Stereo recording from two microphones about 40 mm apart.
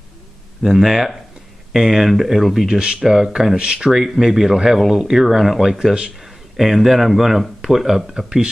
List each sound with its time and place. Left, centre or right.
0.6 s speech: centre
2.7 s speech: centre
3.2 s speech: centre
3.5 s speech: right
3.9 s speech: centre